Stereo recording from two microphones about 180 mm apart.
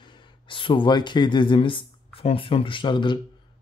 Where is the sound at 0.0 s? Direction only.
25° left (ahead or behind).